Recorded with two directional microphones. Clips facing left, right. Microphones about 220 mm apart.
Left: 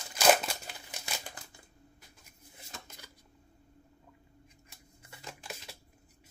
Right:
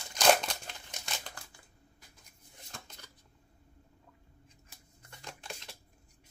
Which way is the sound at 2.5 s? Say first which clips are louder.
Left 1 dB; 5° left (ahead or behind).